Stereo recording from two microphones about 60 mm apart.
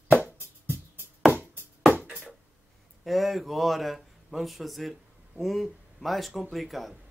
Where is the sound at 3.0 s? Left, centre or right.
Centre.